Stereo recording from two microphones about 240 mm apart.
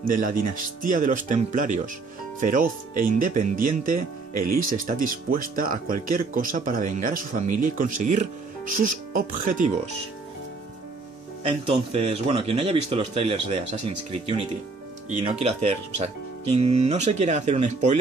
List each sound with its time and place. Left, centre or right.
0.0 s speech: right
11.4 s a man's voice: right
15.0 s a man's voice: right